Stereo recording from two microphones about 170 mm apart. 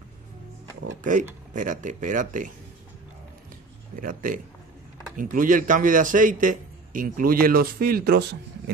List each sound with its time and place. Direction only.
1.0 s a man's voice: 50° right (ahead or behind)
4.0 s a man's voice: 55° right (ahead or behind); by 8.7 s 80° right